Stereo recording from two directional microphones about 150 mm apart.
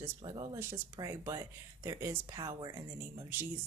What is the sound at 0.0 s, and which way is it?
Speech, 25° right (ahead or behind).